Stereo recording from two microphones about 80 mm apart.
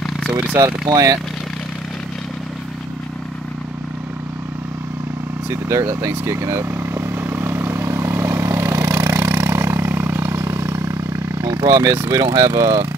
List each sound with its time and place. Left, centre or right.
0.3 s speech: centre
0.6 s speech: right
5.5 s speech: right
6.8 s vehicle: right
11.4 s speech: right